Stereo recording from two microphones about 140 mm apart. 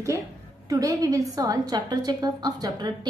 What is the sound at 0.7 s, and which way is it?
A woman's voice, 25° right (ahead or behind).